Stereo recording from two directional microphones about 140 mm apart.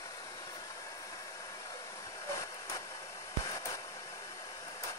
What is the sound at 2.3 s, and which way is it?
Vehicle, 20° left (ahead or behind).